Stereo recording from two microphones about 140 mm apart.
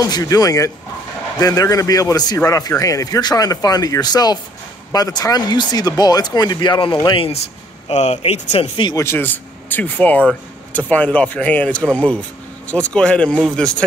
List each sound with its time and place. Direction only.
0.0 s a man's voice: 25° left (ahead or behind); by 7.3 s 40° left (ahead or behind)
7.9 s speech: 55° left (ahead or behind)
8.9 s speech: 15° left (ahead or behind)